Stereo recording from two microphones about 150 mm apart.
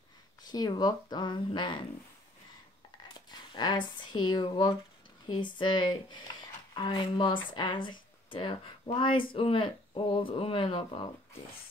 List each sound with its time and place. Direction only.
0.4 s speech: 30° left (ahead or behind)
3.3 s speech: 30° left (ahead or behind)